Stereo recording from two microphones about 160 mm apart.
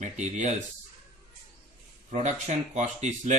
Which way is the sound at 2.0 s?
45° right (ahead or behind).